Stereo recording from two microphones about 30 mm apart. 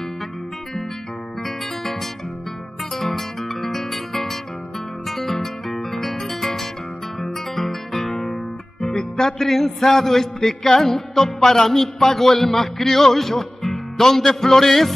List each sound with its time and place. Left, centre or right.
3.0 s guitar: centre
8.8 s music: centre